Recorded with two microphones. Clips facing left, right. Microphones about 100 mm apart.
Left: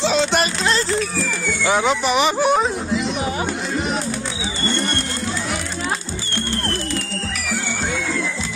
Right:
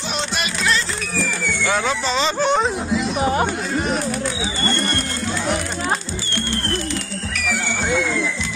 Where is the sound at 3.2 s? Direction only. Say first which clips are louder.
Right 5 dB; 45° right (ahead or behind).